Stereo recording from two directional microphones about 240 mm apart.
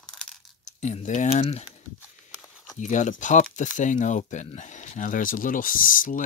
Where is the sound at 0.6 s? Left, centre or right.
Left.